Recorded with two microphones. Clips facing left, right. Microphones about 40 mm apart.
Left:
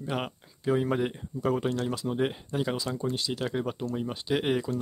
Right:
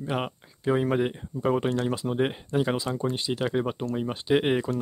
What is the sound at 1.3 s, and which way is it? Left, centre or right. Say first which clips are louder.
Speech: right 3 dB; right.